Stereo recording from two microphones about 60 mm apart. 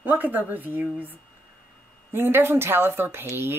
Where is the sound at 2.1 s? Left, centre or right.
Right.